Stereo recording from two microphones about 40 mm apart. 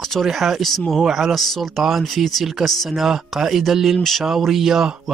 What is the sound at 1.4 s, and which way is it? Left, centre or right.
Speech, centre.